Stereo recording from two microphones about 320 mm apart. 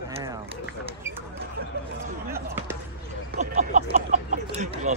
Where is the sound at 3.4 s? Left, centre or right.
Right.